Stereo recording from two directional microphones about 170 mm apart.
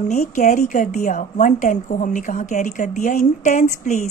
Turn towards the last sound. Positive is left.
turn(degrees=45)  # may be behind; listen again after turning